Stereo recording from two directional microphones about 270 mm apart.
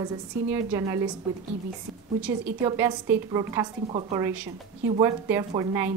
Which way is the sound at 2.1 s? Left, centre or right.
Centre.